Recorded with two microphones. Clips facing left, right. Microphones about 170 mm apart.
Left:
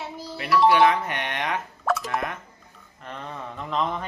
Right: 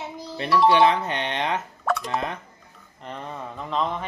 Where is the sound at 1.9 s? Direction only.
Centre (ahead or behind).